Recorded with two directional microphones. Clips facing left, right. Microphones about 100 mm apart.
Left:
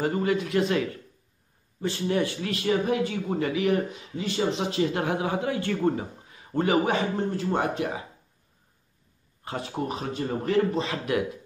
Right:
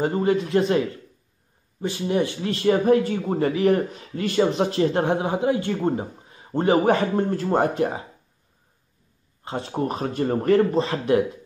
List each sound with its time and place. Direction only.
0.0 s a man's voice: 30° right (ahead or behind)
1.8 s a man's voice: 15° right (ahead or behind)
2.5 s speech: 40° right (ahead or behind)
4.1 s speech: 60° right (ahead or behind); by 5.0 s 40° right (ahead or behind)
5.0 s a man's voice: 30° right (ahead or behind)
6.9 s speech: 50° right (ahead or behind)
9.4 s speech: 30° right (ahead or behind)
9.8 s speech: 45° right (ahead or behind)
10.8 s speech: 30° right (ahead or behind)